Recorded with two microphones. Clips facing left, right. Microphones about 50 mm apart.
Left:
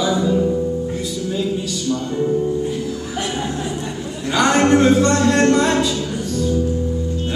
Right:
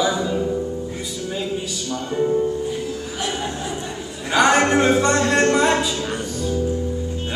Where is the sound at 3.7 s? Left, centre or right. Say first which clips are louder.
Left 3 dB; centre.